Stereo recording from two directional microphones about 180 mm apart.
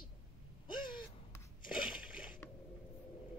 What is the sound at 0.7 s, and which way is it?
Gasp, 25° left (ahead or behind).